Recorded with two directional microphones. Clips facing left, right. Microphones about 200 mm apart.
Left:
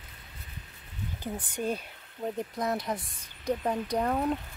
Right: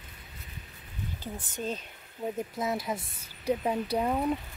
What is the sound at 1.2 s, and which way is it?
Speech, 15° left (ahead or behind).